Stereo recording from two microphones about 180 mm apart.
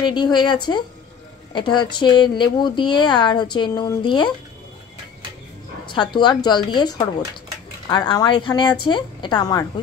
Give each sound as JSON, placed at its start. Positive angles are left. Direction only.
{"t": 0.0, "sound": "speech", "side_deg": 25}
{"t": 5.9, "sound": "speech", "side_deg": 25}